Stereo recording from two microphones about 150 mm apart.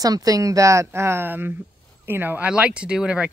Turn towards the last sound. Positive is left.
turn(degrees=-5)  # may be behind; listen again after turning